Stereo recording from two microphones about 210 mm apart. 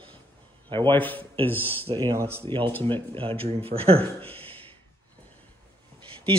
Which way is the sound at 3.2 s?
25° right (ahead or behind).